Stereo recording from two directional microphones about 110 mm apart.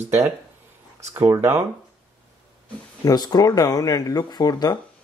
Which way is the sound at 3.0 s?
35° left (ahead or behind).